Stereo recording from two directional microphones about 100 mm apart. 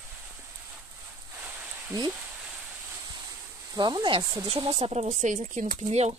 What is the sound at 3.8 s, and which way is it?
Speech, 50° right (ahead or behind).